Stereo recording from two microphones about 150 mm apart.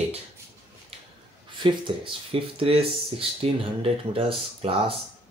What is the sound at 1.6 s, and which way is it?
Speech, 30° right (ahead or behind).